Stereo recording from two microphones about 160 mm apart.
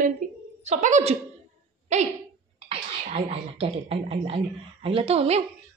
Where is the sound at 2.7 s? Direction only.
35° right (ahead or behind).